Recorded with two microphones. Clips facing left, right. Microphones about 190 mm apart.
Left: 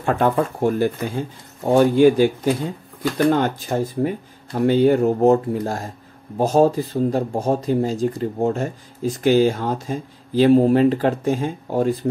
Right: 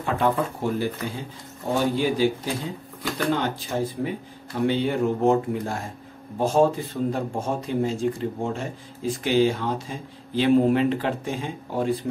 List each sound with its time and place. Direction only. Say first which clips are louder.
0.0 s speech: left 4 dB; 50° left (ahead or behind)